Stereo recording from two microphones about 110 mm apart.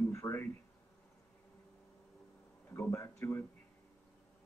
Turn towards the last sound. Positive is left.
turn(degrees=25)  # may be behind; listen again after turning